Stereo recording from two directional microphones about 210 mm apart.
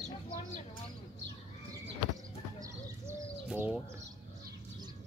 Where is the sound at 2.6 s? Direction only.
15° right (ahead or behind).